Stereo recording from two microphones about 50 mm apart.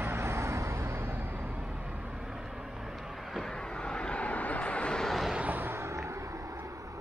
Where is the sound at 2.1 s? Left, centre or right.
Centre.